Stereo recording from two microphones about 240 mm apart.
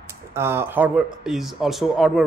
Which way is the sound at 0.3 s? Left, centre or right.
Centre.